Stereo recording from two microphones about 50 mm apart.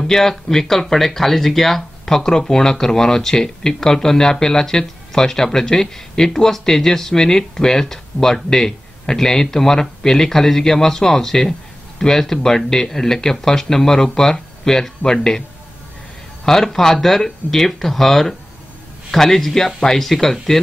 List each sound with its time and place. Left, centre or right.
0.0 s speech: centre
16.4 s speech: centre